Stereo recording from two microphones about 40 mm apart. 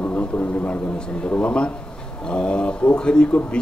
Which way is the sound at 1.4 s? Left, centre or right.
Left.